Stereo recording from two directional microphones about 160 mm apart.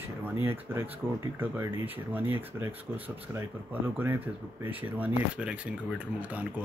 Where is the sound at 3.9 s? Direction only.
15° right (ahead or behind).